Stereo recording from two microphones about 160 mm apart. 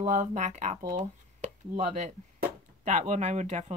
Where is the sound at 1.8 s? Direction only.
50° right (ahead or behind).